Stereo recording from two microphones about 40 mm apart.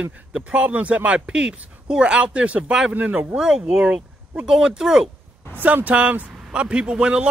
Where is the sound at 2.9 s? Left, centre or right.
Right.